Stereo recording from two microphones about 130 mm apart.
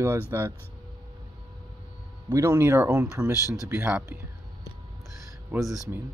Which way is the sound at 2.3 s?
20° right (ahead or behind).